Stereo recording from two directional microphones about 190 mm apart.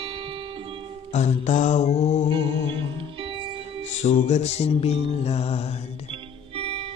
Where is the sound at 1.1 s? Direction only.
40° left (ahead or behind).